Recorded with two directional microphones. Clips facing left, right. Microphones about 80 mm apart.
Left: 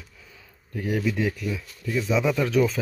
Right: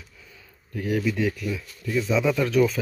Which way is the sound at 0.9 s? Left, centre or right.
Centre.